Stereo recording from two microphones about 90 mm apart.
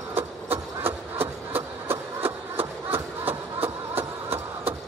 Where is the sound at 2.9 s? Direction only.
25° right (ahead or behind).